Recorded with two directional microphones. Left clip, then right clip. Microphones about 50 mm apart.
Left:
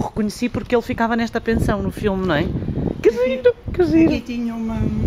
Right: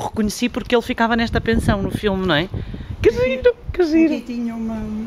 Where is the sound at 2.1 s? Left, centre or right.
Centre.